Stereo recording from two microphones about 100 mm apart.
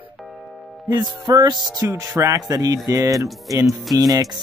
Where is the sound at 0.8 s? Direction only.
45° right (ahead or behind).